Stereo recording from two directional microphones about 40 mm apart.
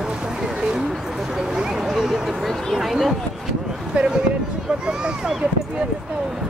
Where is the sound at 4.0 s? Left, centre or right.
Right.